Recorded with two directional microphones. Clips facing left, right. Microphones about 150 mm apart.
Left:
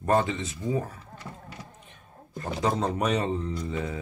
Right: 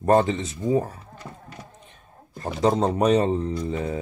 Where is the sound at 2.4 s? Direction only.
35° right (ahead or behind).